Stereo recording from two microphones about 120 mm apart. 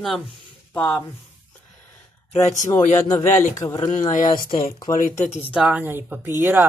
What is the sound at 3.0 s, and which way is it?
Speech, 25° left (ahead or behind).